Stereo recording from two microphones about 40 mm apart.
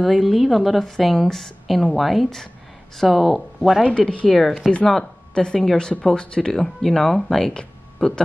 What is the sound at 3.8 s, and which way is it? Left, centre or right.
Speech, left.